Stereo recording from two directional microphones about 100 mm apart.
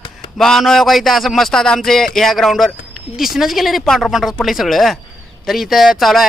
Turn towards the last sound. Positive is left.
turn(degrees=0)  # may be behind; listen again after turning